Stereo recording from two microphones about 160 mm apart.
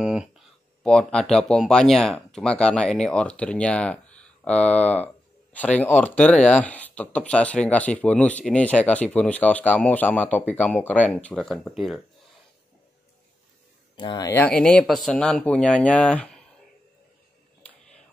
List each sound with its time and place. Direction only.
0.0 s a sound: 5° right (ahead or behind)
0.8 s speech: 5° left (ahead or behind)
13.9 s speech: 30° left (ahead or behind)
14.3 s speech: 10° left (ahead or behind)